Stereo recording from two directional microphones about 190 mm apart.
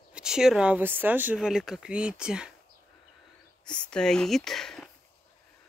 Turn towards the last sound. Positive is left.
turn(degrees=0)  # may be behind; listen again after turning